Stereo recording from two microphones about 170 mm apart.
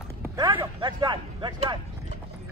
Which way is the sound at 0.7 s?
30° right (ahead or behind).